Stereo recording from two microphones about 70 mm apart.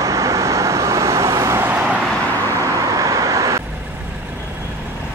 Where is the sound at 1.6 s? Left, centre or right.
Right.